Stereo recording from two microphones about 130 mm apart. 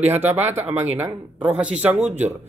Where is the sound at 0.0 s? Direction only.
15° right (ahead or behind).